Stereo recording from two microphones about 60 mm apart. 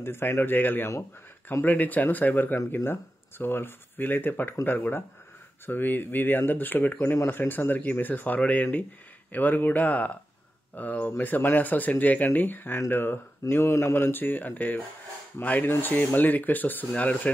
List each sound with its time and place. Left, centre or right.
0.0 s speech: left
13.5 s speech: left